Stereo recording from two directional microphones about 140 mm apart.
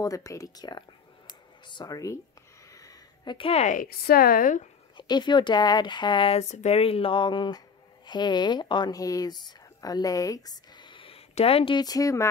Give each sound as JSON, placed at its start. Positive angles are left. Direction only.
{"t": 0.0, "sound": "speech", "side_deg": 25}
{"t": 2.7, "sound": "a sound", "side_deg": 25}
{"t": 3.3, "sound": "a woman's voice", "side_deg": 40}
{"t": 3.6, "sound": "a woman's voice", "side_deg": 80}
{"t": 4.9, "sound": "speech", "side_deg": 30}
{"t": 6.5, "sound": "speech", "side_deg": 50}